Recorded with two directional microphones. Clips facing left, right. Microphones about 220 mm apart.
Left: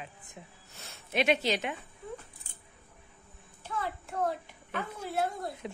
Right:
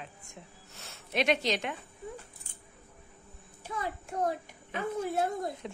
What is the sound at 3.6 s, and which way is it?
A child's voice, 15° right (ahead or behind).